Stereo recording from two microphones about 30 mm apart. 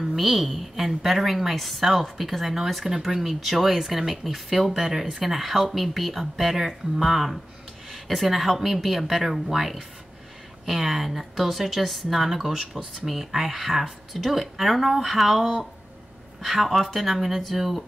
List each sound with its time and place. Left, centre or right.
0.0 s speech: centre
2.8 s speech: centre
3.2 s speech: centre